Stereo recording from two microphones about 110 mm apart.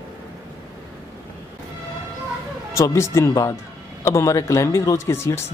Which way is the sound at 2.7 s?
25° left (ahead or behind).